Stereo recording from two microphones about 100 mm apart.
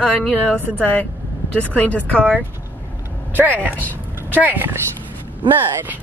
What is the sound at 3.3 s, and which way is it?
Speech, 20° right (ahead or behind).